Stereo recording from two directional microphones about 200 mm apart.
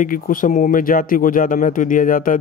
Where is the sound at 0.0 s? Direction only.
45° left (ahead or behind).